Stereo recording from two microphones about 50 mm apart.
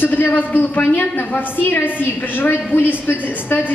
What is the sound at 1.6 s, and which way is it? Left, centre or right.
A woman's voice, left.